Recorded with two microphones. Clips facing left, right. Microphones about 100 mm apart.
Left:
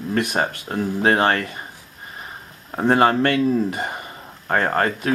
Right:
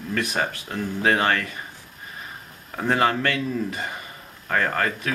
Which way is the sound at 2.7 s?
30° left (ahead or behind).